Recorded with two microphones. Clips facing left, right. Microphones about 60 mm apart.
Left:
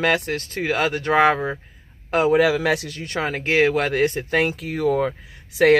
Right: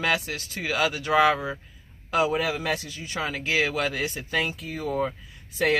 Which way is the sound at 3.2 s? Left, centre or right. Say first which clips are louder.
Left 7 dB; left.